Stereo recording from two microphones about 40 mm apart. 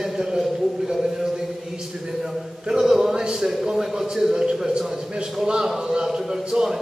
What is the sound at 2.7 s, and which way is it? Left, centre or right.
A man's voice, centre.